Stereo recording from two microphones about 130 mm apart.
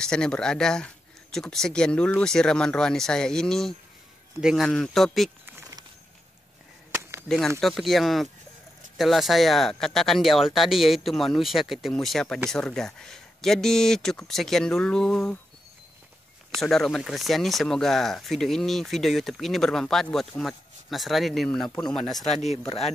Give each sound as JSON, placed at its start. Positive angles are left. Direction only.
{"t": 0.0, "sound": "speech", "side_deg": 5}
{"t": 4.6, "sound": "speech", "side_deg": 5}
{"t": 6.9, "sound": "chop", "side_deg": -20}
{"t": 7.2, "sound": "speech", "side_deg": 5}
{"t": 16.6, "sound": "speech", "side_deg": 5}
{"t": 22.7, "sound": "speech", "side_deg": 50}